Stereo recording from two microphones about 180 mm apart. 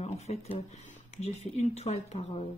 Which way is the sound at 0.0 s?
35° left (ahead or behind).